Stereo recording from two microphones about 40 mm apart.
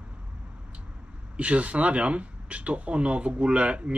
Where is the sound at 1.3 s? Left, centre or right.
Right.